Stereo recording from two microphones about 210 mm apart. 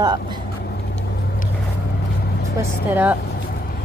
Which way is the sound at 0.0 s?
20° right (ahead or behind).